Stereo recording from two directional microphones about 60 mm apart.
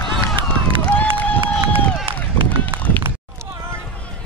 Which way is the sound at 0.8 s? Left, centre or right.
Left.